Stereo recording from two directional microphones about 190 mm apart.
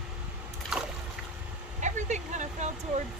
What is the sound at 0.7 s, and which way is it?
Boat, centre (ahead or behind).